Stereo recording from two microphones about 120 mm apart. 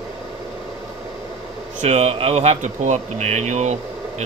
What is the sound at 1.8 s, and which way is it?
Speech, 65° right (ahead or behind).